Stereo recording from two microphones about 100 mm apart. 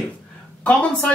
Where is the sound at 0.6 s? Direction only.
10° left (ahead or behind).